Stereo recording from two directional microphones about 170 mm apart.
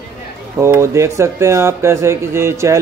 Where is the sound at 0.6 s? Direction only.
15° right (ahead or behind).